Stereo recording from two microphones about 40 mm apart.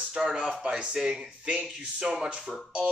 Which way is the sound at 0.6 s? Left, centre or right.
Right.